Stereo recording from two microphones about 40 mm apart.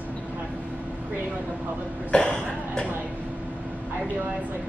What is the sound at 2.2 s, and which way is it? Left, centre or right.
Cough, left.